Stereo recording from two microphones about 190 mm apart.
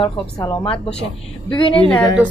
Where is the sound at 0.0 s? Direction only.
25° left (ahead or behind).